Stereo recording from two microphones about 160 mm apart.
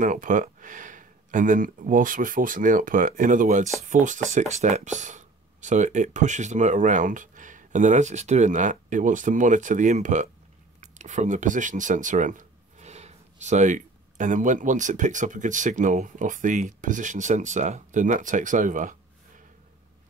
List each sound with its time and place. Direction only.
0.0 s speech: 55° right (ahead or behind)